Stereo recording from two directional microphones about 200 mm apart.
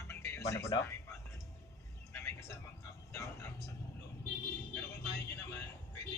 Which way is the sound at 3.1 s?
15° left (ahead or behind).